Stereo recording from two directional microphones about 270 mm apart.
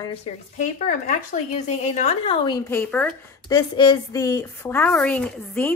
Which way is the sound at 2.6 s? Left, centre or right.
Centre.